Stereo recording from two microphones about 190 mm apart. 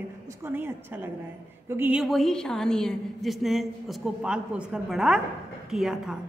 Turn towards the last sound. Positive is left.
turn(degrees=-5)  # may be behind; listen again after turning